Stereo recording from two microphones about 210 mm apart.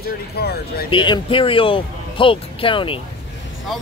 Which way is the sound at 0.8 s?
20° left (ahead or behind).